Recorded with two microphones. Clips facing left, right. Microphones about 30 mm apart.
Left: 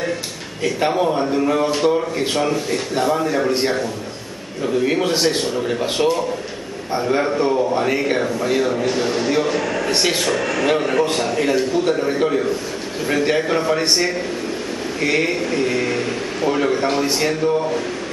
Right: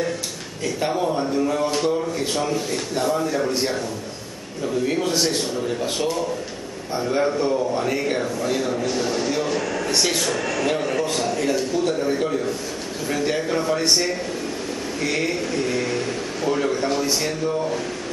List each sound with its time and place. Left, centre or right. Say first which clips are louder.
0.7 s a man's voice: left 4 dB; left